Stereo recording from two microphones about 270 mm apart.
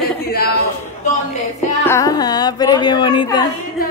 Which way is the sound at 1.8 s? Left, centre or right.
Centre.